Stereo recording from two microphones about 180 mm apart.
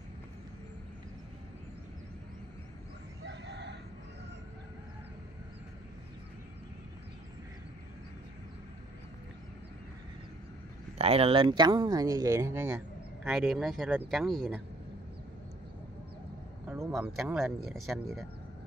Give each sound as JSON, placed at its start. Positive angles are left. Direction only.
{"t": 3.3, "sound": "chicken", "side_deg": -70}
{"t": 11.0, "sound": "speech", "side_deg": -35}
{"t": 13.2, "sound": "speech", "side_deg": 0}
{"t": 16.9, "sound": "speech", "side_deg": -5}